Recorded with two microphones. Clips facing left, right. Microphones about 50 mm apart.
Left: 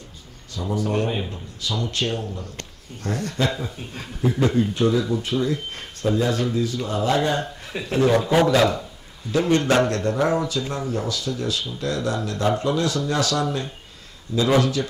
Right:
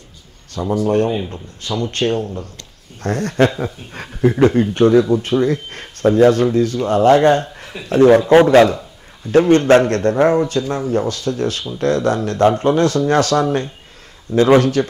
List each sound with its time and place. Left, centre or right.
0.6 s a man's voice: right